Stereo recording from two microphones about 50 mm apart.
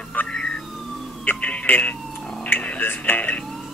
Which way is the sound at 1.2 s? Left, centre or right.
Left.